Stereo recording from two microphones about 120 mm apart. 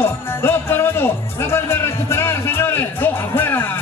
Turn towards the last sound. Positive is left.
turn(degrees=20)  # may be behind; listen again after turning